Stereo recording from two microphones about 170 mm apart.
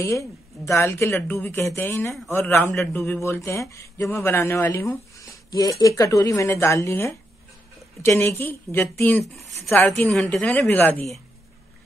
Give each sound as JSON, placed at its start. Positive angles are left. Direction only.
{"t": 0.0, "sound": "speech", "side_deg": 20}